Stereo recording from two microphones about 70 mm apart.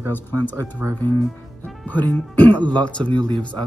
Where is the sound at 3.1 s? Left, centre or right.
Right.